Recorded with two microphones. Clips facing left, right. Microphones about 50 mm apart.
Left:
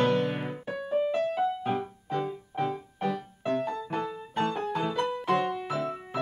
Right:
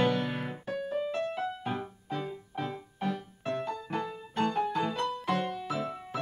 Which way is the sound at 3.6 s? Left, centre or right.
Left.